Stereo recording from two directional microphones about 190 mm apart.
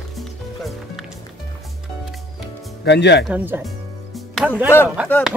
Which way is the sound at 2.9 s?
60° left (ahead or behind).